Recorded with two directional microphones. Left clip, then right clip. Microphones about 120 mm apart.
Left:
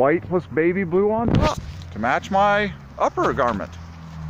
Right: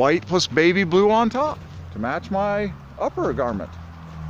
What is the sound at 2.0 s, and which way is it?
Speech, 10° right (ahead or behind).